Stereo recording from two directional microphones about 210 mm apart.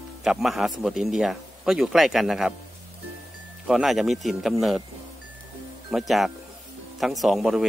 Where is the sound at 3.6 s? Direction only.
Centre (ahead or behind).